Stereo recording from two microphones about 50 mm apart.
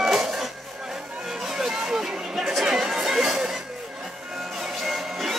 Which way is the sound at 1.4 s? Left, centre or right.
Centre.